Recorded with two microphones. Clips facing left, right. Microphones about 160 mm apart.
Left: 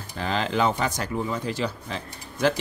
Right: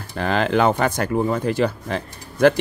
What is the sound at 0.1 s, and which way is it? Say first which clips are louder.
Speech: right 6 dB; 60° right (ahead or behind).